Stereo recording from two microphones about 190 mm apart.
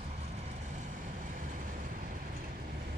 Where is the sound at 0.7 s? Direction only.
40° right (ahead or behind).